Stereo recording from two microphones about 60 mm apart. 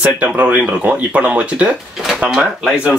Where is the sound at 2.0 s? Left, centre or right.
Centre.